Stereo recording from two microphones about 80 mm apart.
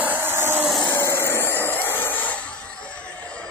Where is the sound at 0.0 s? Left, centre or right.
Right.